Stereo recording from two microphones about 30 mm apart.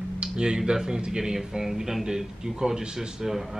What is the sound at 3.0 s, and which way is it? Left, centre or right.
Speech, centre.